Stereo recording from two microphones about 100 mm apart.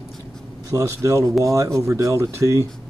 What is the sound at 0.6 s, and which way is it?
Speech, 35° right (ahead or behind).